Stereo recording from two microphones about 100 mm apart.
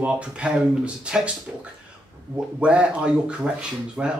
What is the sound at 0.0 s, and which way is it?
Speech, 10° right (ahead or behind).